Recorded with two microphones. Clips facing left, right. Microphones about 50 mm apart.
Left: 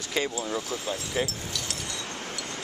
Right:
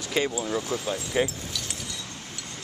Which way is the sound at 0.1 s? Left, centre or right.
Centre.